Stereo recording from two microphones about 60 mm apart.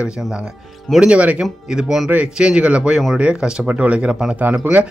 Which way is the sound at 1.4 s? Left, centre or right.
Centre.